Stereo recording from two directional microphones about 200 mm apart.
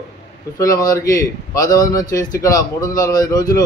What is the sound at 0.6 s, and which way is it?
A man's voice, 15° left (ahead or behind).